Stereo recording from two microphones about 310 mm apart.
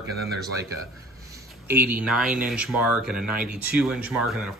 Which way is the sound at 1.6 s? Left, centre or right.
Centre.